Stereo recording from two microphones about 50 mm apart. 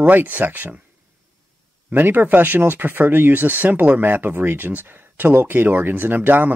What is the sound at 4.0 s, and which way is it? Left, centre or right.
Speech, right.